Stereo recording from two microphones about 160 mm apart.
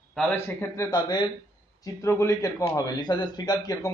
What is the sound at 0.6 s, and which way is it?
A man's voice, 20° left (ahead or behind).